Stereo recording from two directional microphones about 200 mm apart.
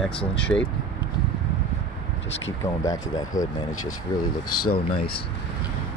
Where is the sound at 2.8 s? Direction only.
15° left (ahead or behind).